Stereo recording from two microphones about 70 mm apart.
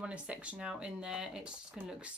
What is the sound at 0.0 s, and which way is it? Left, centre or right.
Speech, centre.